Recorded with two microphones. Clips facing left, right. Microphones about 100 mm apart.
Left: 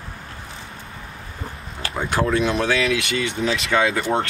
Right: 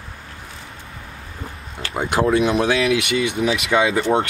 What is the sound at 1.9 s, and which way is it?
Speech, 15° right (ahead or behind).